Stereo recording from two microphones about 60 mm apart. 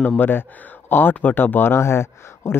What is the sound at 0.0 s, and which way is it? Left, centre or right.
Speech, left.